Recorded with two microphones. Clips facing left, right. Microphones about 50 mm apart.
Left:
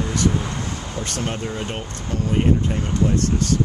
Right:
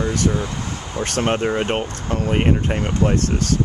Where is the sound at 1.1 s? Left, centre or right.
Right.